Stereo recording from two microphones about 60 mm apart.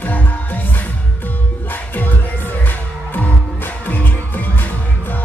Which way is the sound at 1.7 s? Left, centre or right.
Left.